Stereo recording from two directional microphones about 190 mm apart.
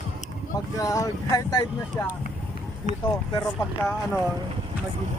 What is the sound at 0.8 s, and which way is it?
Speech, 20° left (ahead or behind).